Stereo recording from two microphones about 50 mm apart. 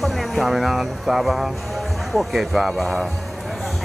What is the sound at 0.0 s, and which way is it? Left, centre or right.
Speech, centre.